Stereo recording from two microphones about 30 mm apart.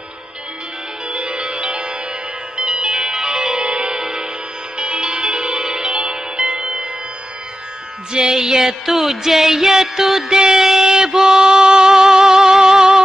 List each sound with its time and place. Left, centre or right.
1.1 s music: right
3.7 s music: right
4.0 s music: right
6.6 s music: centre
8.1 s music: right